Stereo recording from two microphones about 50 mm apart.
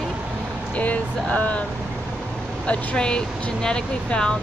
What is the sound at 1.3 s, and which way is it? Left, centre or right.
Speech, left.